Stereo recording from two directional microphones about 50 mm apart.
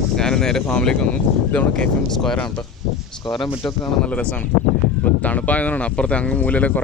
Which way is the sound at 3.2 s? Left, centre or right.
Left.